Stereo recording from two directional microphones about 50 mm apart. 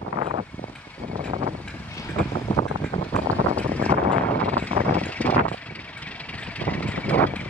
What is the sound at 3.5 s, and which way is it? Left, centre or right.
Vehicle, left.